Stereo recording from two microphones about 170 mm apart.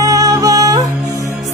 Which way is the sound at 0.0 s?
20° right (ahead or behind).